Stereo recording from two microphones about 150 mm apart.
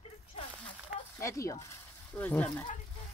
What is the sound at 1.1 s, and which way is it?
Speech, 20° left (ahead or behind).